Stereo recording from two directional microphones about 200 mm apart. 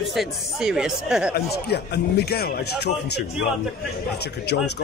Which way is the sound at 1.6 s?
55° left (ahead or behind).